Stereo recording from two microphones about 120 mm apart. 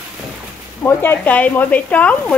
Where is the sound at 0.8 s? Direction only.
15° left (ahead or behind).